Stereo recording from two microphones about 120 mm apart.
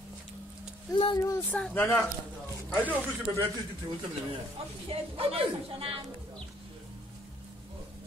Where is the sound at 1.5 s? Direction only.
15° left (ahead or behind).